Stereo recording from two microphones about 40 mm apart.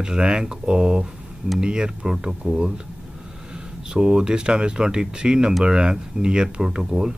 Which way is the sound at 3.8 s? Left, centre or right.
Right.